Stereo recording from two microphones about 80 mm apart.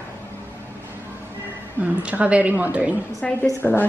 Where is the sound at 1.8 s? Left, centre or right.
Centre.